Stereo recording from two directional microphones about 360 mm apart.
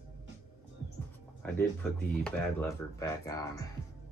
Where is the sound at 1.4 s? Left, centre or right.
Centre.